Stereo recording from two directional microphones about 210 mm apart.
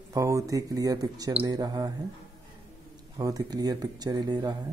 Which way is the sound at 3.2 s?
20° right (ahead or behind).